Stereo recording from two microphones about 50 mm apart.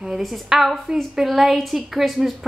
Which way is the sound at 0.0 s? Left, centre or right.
Centre.